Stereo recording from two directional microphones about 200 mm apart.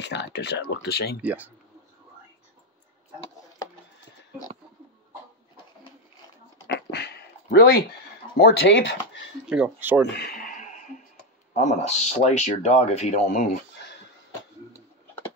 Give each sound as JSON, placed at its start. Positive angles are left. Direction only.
{"t": 0.0, "sound": "speech", "side_deg": 60}
{"t": 1.2, "sound": "speech", "side_deg": -10}
{"t": 6.7, "sound": "dog", "side_deg": 55}
{"t": 8.4, "sound": "speech", "side_deg": 60}
{"t": 9.5, "sound": "speech", "side_deg": -5}
{"t": 10.1, "sound": "a sound", "side_deg": 45}
{"t": 11.5, "sound": "speech", "side_deg": 35}